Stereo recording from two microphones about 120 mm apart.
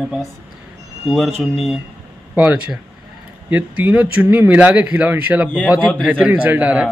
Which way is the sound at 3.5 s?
15° right (ahead or behind).